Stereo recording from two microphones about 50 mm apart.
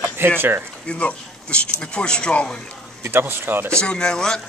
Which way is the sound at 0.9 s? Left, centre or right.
Left.